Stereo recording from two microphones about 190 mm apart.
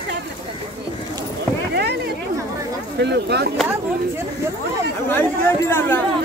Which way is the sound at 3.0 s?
60° right (ahead or behind).